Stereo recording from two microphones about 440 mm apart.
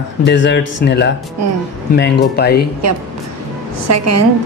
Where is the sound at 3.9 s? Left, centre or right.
Right.